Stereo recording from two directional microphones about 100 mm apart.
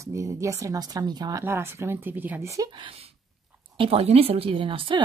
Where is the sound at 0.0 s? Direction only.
30° right (ahead or behind).